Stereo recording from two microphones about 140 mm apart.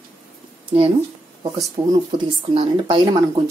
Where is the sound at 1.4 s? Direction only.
30° right (ahead or behind).